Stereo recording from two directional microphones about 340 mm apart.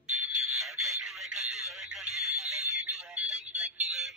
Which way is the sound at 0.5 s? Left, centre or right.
Centre.